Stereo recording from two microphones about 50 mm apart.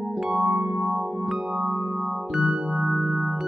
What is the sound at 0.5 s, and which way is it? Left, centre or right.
Music, centre.